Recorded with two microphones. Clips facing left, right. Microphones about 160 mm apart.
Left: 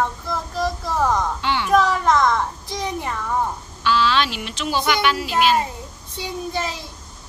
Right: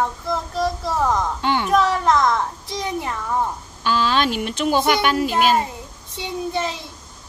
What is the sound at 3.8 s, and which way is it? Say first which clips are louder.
Speech: even; 45° right (ahead or behind).